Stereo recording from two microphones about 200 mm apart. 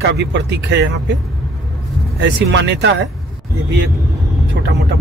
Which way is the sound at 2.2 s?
65° right (ahead or behind).